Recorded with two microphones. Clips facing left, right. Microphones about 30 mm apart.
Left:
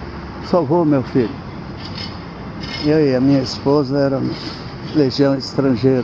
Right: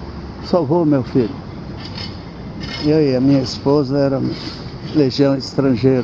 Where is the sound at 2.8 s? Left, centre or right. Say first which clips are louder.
Even; centre.